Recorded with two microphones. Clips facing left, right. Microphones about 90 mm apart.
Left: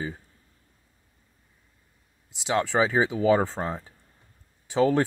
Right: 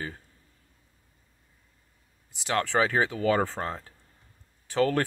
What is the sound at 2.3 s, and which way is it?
Speech, 15° left (ahead or behind).